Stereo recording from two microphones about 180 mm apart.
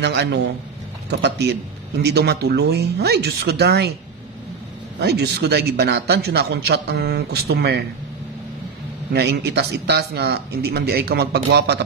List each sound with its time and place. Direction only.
0.0 s a man's voice: 70° right (ahead or behind)
2.0 s speech: 65° right (ahead or behind)
5.0 s speech: 65° right (ahead or behind)
9.1 s speech: 65° right (ahead or behind)